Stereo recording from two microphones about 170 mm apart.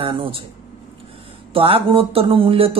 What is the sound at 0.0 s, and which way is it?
Speech, 30° right (ahead or behind).